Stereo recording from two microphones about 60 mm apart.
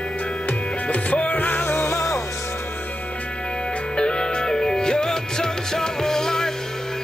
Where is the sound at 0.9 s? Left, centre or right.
Left.